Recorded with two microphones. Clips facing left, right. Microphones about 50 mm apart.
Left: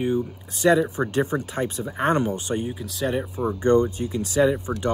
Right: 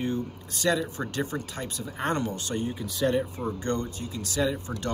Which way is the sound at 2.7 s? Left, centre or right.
Centre.